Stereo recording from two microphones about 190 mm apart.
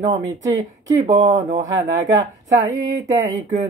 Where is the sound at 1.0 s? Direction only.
40° right (ahead or behind).